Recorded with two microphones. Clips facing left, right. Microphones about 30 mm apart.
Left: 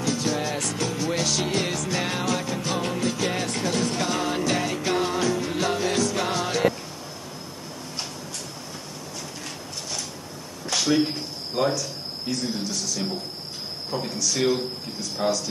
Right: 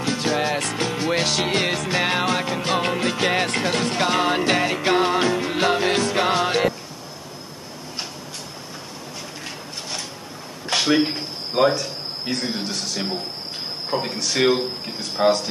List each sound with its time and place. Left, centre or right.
0.0 s music: right
10.7 s a man's voice: right